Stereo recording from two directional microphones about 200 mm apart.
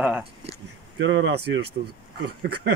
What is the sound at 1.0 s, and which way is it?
Speech, 70° right (ahead or behind).